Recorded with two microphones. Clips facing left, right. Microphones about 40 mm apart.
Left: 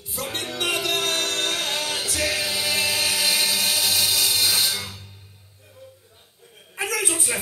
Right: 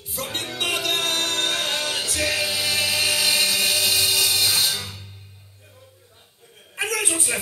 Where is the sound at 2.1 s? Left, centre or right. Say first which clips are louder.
Right 1 dB; centre.